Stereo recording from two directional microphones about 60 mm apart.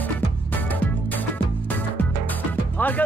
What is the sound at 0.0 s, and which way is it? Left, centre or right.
Music, left.